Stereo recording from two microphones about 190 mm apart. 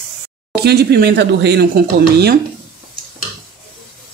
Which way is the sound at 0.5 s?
60° right (ahead or behind).